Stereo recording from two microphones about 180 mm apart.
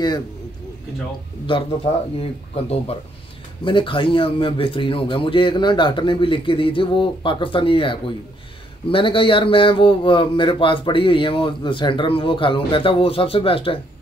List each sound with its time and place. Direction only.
2.1 s a man's voice: 35° left (ahead or behind)